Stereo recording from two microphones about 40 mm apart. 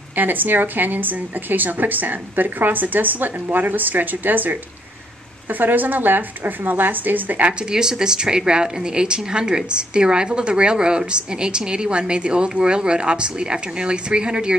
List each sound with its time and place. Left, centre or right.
0.1 s a woman's voice: right
7.7 s a woman's voice: centre